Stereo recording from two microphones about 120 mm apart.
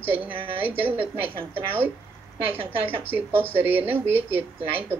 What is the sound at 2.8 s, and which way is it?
Speech, 15° right (ahead or behind).